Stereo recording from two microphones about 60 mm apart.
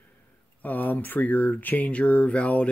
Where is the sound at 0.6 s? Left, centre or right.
Left.